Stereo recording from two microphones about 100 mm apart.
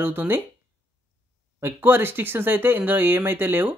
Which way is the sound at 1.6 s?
20° right (ahead or behind).